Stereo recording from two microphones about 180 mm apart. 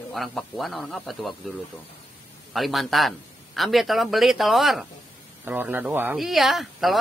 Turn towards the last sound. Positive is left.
turn(degrees=0)  # may be behind; listen again after turning